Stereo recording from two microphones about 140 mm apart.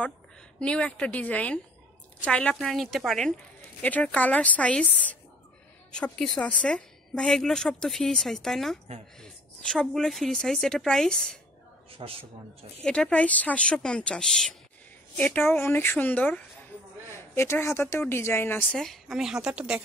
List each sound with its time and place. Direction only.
0.6 s a woman's voice: 5° left (ahead or behind)
11.9 s a man's voice: 40° right (ahead or behind)
12.8 s speech: 5° left (ahead or behind)
18.7 s a woman's voice: 5° left (ahead or behind)